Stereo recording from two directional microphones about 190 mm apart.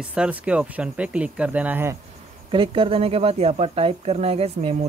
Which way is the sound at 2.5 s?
25° right (ahead or behind).